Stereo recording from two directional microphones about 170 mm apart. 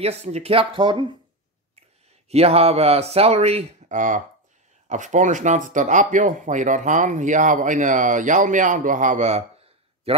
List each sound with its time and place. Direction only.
0.0 s speech: 40° right (ahead or behind)
2.2 s speech: 35° right (ahead or behind)